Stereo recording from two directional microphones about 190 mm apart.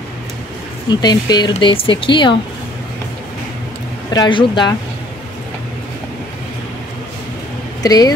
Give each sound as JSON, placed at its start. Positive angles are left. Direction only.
{"t": 0.8, "sound": "speech", "side_deg": 20}
{"t": 4.1, "sound": "speech", "side_deg": 25}
{"t": 7.8, "sound": "speech", "side_deg": 20}